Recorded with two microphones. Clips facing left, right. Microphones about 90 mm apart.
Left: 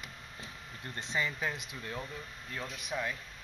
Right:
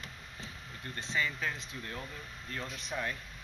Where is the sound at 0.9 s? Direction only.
20° left (ahead or behind).